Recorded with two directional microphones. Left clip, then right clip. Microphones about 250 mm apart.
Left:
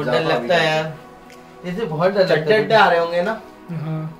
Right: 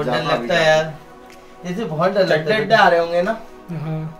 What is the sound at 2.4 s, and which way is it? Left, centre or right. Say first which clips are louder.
Mantra: even; centre.